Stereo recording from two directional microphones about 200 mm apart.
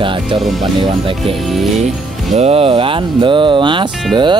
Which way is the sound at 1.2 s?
Centre (ahead or behind).